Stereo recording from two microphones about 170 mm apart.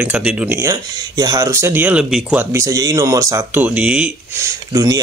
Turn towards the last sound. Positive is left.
turn(degrees=-20)  # may be behind; listen again after turning